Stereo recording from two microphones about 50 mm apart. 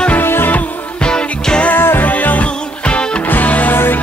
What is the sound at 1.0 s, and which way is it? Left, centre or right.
Music, centre.